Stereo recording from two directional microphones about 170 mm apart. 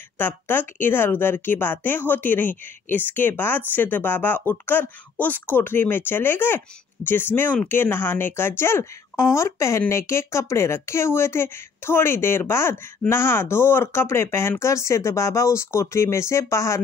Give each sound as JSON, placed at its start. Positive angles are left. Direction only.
{"t": 0.2, "sound": "speech", "side_deg": 10}